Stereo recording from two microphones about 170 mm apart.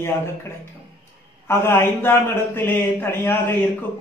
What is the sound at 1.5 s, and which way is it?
A man's voice, 15° left (ahead or behind).